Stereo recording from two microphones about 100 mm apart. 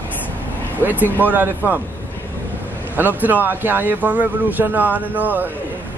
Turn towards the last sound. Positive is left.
turn(degrees=-20)  # may be behind; listen again after turning